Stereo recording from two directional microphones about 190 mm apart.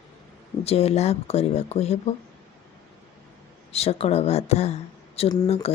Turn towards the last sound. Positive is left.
turn(degrees=35)  # may be behind; listen again after turning